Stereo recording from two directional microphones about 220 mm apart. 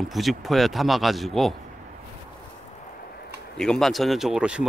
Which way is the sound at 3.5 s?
Centre (ahead or behind).